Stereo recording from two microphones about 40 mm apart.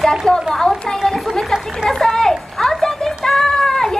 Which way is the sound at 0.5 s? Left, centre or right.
Centre.